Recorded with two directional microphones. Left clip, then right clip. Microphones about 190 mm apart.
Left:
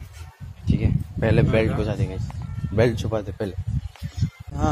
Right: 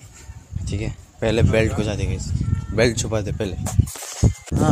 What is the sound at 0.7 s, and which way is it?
Speech, 20° right (ahead or behind).